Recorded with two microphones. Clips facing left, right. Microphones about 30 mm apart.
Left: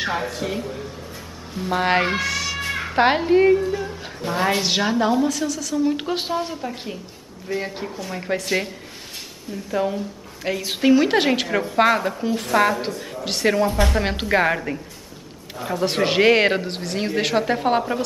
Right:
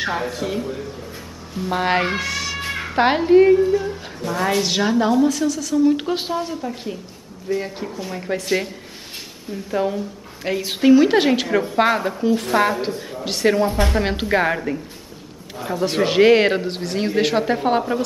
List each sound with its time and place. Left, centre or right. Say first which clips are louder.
0.0 s speech: right 1 dB; centre
3.7 s a sound: right 6 dB; centre
4.2 s a woman's voice: right 1 dB; centre
13.7 s speech: even; centre
13.9 s speech: right 1 dB; centre